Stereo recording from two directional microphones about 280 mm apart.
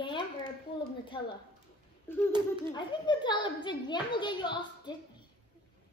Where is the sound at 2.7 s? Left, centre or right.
Centre.